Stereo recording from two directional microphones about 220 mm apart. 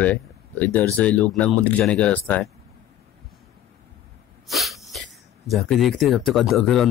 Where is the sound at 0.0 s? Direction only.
5° left (ahead or behind).